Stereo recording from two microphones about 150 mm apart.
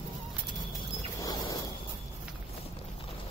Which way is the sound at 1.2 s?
25° left (ahead or behind).